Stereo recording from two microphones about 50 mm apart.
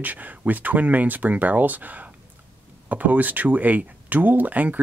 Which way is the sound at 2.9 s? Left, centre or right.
Right.